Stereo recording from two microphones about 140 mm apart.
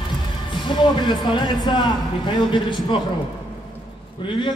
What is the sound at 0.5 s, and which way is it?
Speech, 35° left (ahead or behind).